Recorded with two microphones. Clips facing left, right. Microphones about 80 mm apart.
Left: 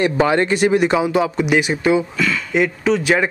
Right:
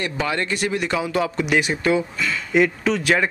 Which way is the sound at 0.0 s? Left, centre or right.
Left.